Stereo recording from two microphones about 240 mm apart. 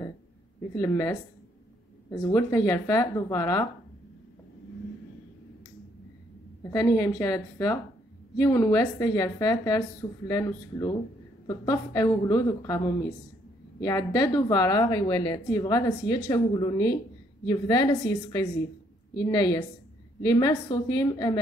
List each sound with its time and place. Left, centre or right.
0.7 s a woman's voice: centre
6.7 s a woman's voice: centre
19.1 s a woman's voice: centre